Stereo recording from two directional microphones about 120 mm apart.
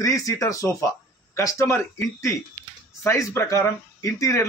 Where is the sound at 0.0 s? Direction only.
30° left (ahead or behind).